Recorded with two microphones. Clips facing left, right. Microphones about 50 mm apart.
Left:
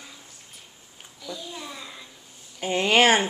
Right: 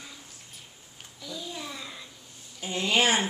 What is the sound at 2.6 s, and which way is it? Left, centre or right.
Speech, left.